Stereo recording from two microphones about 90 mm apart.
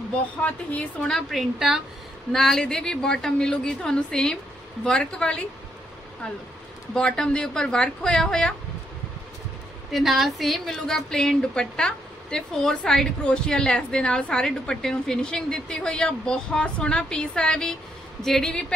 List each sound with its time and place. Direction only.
0.4 s a woman's voice: 15° left (ahead or behind)
1.1 s a woman's voice: centre (ahead or behind)
6.9 s a woman's voice: 5° left (ahead or behind)
9.9 s a woman's voice: centre (ahead or behind)